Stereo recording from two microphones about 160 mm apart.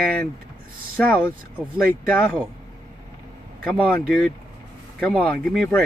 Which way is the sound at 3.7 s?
Centre (ahead or behind).